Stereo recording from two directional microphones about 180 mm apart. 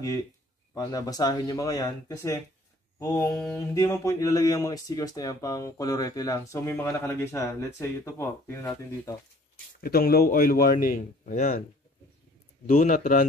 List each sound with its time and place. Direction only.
0.7 s speech: 20° left (ahead or behind)
3.5 s speech: 15° left (ahead or behind)
9.8 s a man's voice: 55° left (ahead or behind)
12.6 s a man's voice: 45° left (ahead or behind)